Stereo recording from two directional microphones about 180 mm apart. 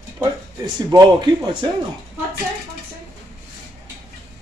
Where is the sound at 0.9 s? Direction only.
20° right (ahead or behind).